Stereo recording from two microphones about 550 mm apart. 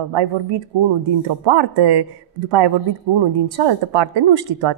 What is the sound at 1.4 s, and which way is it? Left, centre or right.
Speech, right.